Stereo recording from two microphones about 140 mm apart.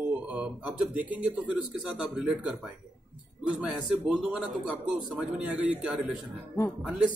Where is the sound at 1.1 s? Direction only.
10° right (ahead or behind).